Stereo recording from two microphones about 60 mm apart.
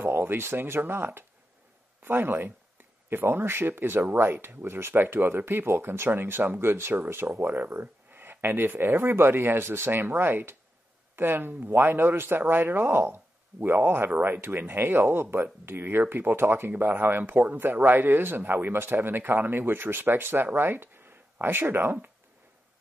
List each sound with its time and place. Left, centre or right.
0.0 s speech: right